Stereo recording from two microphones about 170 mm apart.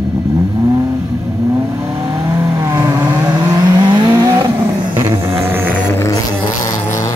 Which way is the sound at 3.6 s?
25° right (ahead or behind).